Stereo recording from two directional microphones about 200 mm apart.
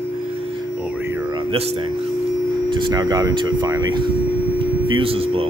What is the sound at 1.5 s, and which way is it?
Speech, 30° right (ahead or behind).